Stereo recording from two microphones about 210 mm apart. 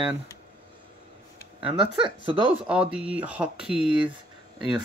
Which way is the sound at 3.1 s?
5° right (ahead or behind).